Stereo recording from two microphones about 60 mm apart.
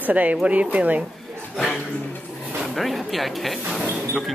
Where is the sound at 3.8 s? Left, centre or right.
Right.